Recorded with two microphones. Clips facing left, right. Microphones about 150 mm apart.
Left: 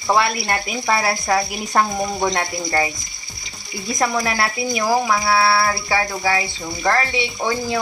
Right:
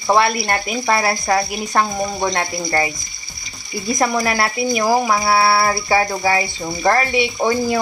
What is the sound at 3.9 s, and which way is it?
Speech, 5° right (ahead or behind).